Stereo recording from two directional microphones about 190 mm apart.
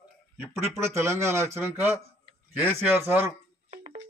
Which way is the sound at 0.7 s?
15° right (ahead or behind).